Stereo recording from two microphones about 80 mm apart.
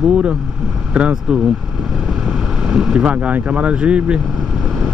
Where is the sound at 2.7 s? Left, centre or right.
Centre.